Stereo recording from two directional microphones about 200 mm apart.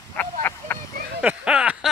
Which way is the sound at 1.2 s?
5° right (ahead or behind).